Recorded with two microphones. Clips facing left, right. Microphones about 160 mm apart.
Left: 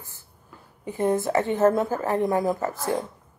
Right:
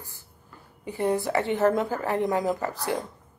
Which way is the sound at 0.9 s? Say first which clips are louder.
Left 2 dB; 20° left (ahead or behind).